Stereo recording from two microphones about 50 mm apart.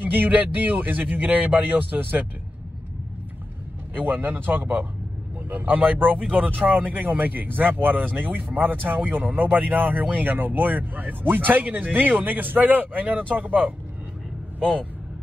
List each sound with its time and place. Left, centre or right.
0.0 s speech: right
3.9 s speech: right